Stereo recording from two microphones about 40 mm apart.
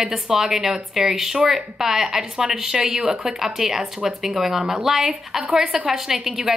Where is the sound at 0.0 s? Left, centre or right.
Centre.